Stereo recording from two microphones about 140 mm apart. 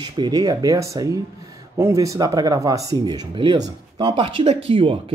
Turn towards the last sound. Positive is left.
turn(degrees=-40)  # may be behind; listen again after turning